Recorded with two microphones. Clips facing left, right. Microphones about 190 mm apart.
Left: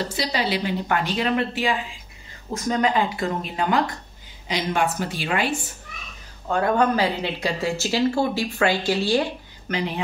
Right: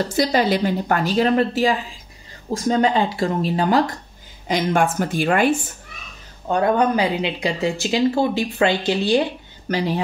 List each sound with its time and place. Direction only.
0.1 s a woman's voice: 50° right (ahead or behind)
2.5 s a woman's voice: 30° right (ahead or behind)
4.5 s a woman's voice: 50° right (ahead or behind)
6.4 s speech: 20° right (ahead or behind)
9.7 s speech: 35° right (ahead or behind)